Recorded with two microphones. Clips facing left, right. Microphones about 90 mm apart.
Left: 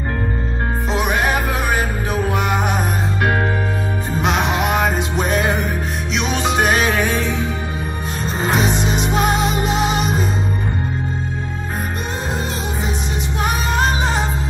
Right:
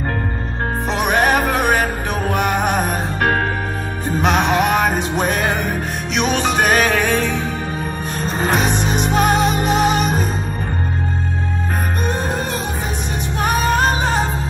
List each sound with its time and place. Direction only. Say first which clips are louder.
0.9 s music: right 3 dB; 55° right (ahead or behind)
13.4 s music: right 3 dB; 45° right (ahead or behind)